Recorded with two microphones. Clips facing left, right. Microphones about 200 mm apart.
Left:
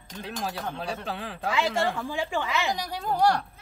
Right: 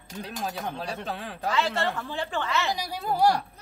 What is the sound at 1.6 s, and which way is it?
Speech, 10° left (ahead or behind).